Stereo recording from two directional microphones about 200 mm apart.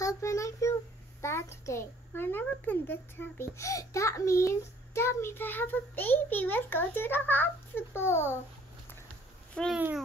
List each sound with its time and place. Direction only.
0.0 s child singing: 15° left (ahead or behind)
1.2 s a child's voice: 15° left (ahead or behind)
9.5 s speech: 5° left (ahead or behind)
9.8 s a child's voice: 10° right (ahead or behind)